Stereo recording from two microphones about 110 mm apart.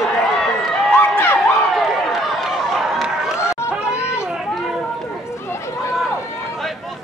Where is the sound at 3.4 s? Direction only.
25° left (ahead or behind).